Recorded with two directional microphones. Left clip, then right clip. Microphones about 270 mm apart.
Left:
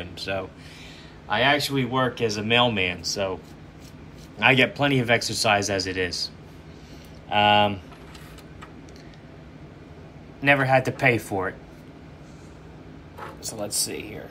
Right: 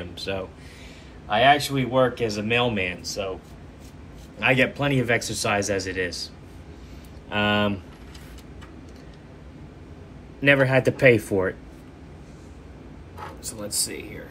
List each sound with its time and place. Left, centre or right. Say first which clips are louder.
0.2 s speech: left 1 dB; centre
4.4 s speech: left 2 dB; centre
7.2 s speech: left 5 dB; centre
10.4 s speech: right 1 dB; centre
13.6 s speech: left 1 dB; left